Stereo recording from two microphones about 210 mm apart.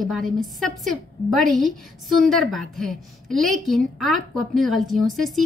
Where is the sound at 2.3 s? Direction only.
Centre (ahead or behind).